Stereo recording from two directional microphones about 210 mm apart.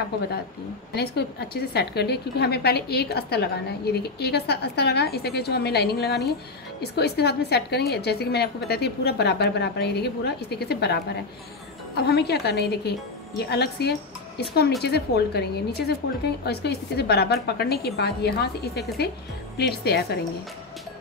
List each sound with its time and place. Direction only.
0.9 s a woman's voice: 50° left (ahead or behind)
12.0 s a woman's voice: 50° left (ahead or behind)